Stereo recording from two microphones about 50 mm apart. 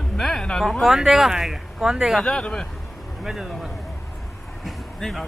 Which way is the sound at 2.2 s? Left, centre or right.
Centre.